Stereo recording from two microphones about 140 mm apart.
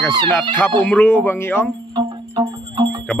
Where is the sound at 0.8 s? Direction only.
10° left (ahead or behind).